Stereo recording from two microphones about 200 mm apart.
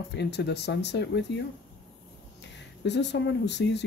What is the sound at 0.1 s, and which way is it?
Speech, 60° left (ahead or behind).